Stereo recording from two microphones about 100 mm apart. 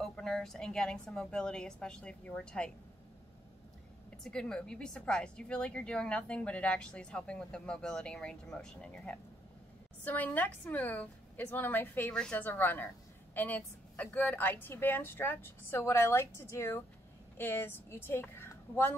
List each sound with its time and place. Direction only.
0.0 s a woman's voice: 5° left (ahead or behind)
4.2 s a woman's voice: 5° left (ahead or behind); by 18.9 s 20° left (ahead or behind)